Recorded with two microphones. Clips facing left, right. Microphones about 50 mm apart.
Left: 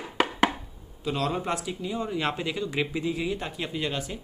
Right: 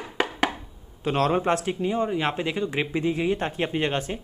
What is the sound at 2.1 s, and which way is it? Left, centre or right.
Speech, right.